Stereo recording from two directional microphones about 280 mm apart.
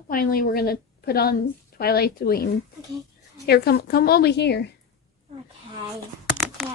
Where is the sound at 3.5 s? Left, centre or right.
Left.